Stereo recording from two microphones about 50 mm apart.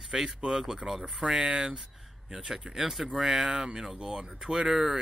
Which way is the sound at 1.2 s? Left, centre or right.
Centre.